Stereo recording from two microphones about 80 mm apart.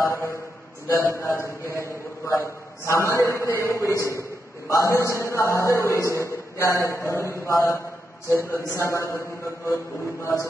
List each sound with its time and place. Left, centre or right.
0.0 s a man's voice: left
3.9 s a man's voice: right
4.6 s a man's voice: left
10.2 s a man's voice: left